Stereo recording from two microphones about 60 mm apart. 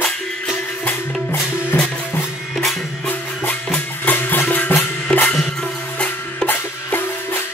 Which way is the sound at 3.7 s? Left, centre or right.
Left.